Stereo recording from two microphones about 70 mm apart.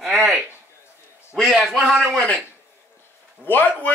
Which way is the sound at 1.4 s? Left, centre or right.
Centre.